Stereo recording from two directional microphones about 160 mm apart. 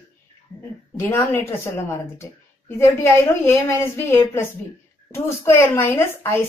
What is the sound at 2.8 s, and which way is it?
A woman's voice, 15° left (ahead or behind).